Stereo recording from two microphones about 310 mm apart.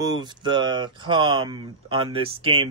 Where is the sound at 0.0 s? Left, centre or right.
Centre.